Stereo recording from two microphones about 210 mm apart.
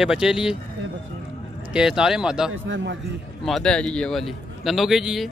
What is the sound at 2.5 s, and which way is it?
Speech, 60° right (ahead or behind).